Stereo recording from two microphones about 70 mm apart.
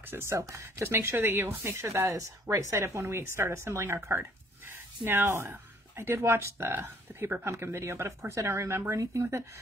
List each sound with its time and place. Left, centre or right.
0.0 s speech: right